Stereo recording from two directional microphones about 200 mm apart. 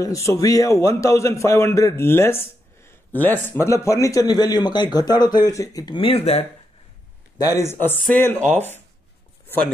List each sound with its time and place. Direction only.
0.0 s a man's voice: 15° left (ahead or behind)
7.3 s a man's voice: 15° left (ahead or behind)